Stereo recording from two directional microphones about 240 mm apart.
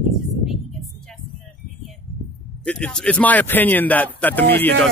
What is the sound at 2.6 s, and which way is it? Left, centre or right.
Speech, centre.